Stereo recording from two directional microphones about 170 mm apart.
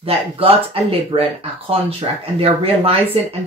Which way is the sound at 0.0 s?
35° right (ahead or behind).